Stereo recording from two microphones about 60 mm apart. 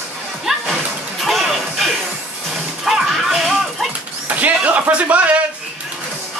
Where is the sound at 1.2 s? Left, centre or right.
Centre.